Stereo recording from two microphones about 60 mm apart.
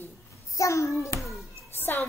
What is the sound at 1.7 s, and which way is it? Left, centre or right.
Music, left.